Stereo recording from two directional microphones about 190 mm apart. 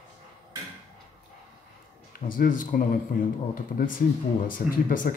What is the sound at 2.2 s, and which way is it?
A man's voice, 45° left (ahead or behind).